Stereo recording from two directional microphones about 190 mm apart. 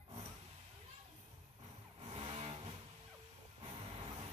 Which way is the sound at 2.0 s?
30° right (ahead or behind).